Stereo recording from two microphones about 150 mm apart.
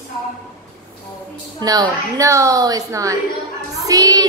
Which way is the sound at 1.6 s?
25° right (ahead or behind).